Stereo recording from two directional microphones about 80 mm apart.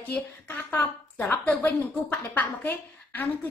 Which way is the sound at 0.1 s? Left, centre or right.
Left.